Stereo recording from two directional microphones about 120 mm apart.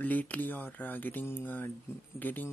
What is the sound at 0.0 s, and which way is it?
Speech, 15° left (ahead or behind).